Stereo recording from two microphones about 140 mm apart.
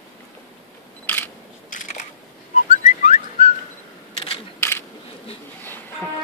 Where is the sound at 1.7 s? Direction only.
65° left (ahead or behind).